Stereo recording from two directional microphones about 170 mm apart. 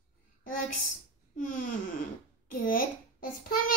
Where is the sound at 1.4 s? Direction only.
50° left (ahead or behind).